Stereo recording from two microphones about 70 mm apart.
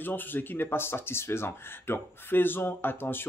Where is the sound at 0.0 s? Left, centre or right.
Left.